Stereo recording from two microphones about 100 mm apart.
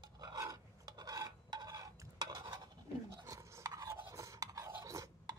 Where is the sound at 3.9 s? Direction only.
30° right (ahead or behind).